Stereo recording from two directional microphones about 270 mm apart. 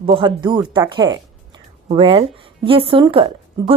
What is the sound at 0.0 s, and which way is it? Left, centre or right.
A woman's voice, centre.